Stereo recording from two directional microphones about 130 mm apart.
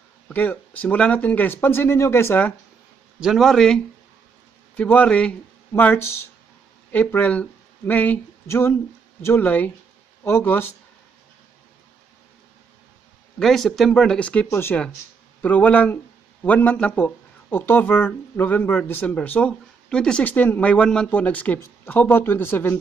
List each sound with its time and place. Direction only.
0.3 s speech: 15° left (ahead or behind)
3.2 s speech: centre (ahead or behind); by 10.7 s 15° left (ahead or behind)
13.4 s speech: centre (ahead or behind)